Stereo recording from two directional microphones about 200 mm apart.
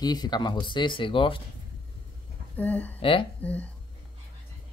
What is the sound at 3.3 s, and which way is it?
Speech, 5° left (ahead or behind).